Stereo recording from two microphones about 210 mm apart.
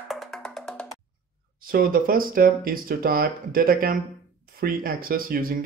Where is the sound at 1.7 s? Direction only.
40° right (ahead or behind).